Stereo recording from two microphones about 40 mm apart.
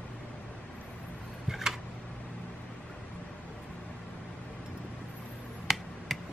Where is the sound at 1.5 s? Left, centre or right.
Centre.